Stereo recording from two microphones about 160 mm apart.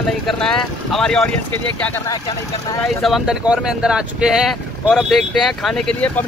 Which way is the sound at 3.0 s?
Centre (ahead or behind).